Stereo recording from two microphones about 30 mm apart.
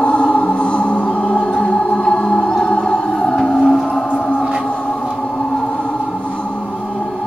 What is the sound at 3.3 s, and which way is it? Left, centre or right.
Music, left.